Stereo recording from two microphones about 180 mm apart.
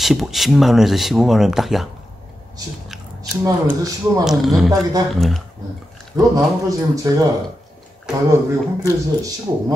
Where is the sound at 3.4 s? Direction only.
20° right (ahead or behind).